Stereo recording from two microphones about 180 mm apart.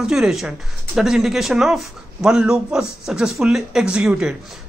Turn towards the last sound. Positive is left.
turn(degrees=-5)  # may be behind; listen again after turning